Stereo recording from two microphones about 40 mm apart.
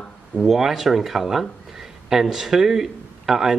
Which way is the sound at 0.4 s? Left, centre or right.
Centre.